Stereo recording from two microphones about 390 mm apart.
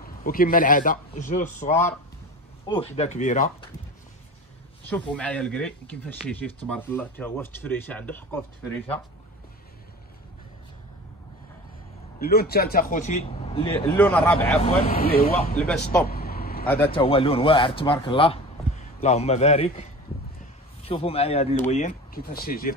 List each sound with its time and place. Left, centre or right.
0.0 s speech: left
1.7 s speech: centre
4.8 s speech: centre
12.2 s speech: left; by 14.6 s centre
14.6 s speech: centre
16.1 s vehicle: left
16.8 s speech: centre